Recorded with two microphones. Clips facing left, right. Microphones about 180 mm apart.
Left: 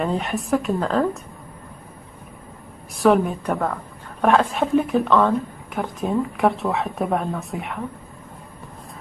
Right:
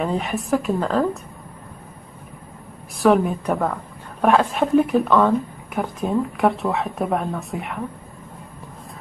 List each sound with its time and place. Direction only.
0.0 s a woman's voice: centre (ahead or behind)
3.0 s a woman's voice: centre (ahead or behind)